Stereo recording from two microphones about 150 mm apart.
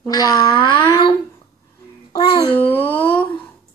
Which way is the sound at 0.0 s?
25° left (ahead or behind).